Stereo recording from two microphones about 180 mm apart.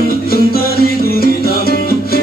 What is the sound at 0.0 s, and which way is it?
Music, 60° left (ahead or behind).